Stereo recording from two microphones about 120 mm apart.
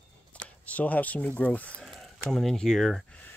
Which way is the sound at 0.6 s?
15° left (ahead or behind).